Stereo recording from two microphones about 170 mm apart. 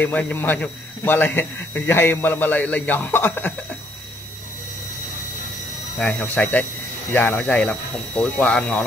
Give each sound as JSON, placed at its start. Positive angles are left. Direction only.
{"t": 0.0, "sound": "a man's voice", "side_deg": 10}
{"t": 5.9, "sound": "a man's voice", "side_deg": 5}